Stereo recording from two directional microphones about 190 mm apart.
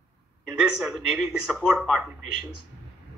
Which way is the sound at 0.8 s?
Centre (ahead or behind).